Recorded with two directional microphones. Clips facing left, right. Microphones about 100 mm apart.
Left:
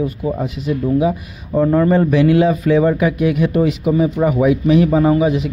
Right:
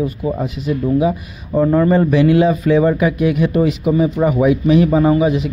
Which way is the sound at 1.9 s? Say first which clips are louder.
Even; 25° right (ahead or behind).